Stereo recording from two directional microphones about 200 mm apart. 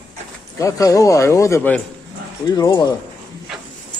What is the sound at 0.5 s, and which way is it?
A man's voice, 15° left (ahead or behind).